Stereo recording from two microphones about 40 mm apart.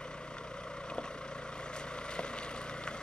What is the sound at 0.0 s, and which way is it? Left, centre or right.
Vehicle, left.